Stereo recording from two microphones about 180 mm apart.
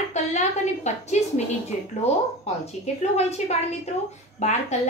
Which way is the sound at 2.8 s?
40° left (ahead or behind).